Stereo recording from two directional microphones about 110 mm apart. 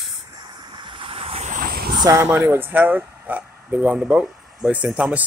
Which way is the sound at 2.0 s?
25° right (ahead or behind).